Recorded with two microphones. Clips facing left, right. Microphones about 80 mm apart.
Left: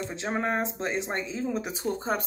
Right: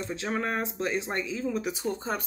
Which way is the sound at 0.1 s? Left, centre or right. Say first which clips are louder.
Left 1 dB; left.